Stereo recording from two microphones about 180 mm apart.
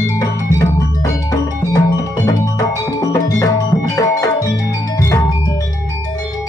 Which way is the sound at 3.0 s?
20° left (ahead or behind).